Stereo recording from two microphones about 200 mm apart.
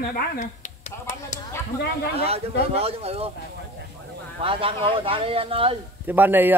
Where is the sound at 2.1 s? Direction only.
30° right (ahead or behind).